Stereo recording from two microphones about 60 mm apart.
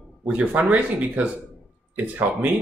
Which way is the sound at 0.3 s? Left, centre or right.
Right.